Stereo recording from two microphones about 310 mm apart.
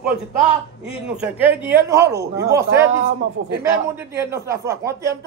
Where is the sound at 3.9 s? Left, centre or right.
Centre.